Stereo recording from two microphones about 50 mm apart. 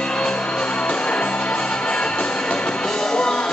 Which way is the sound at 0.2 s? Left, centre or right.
Centre.